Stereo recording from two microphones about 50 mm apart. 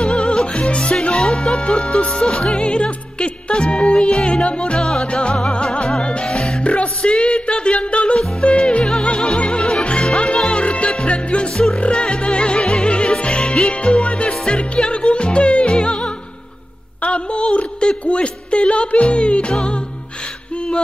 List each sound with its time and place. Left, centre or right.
0.0 s music: centre
1.1 s speech: centre
2.0 s music: centre
2.4 s music: left
6.3 s music: centre
6.6 s music: left
11.5 s music: centre
11.8 s music: left
17.0 s a sound: left